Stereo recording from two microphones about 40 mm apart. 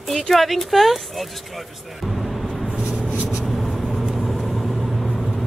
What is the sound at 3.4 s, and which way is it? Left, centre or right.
Vehicle, centre.